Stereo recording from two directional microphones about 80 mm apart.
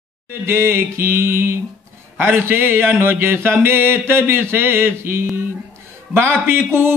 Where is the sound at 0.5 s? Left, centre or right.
Right.